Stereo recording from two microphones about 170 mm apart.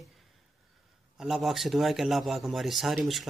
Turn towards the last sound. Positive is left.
turn(degrees=0)  # may be behind; listen again after turning